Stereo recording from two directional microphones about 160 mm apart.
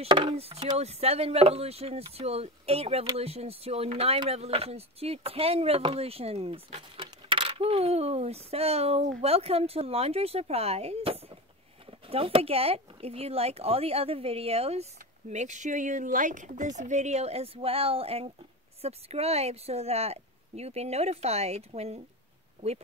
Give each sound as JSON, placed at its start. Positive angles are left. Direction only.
{"t": 0.0, "sound": "speech", "side_deg": -30}